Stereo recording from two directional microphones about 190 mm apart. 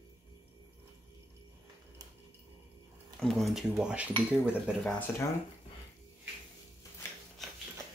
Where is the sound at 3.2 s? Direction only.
Centre (ahead or behind).